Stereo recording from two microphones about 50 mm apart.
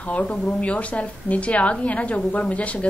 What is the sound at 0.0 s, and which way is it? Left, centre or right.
A woman's voice, left.